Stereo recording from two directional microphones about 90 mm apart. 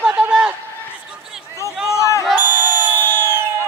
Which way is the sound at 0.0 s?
15° right (ahead or behind).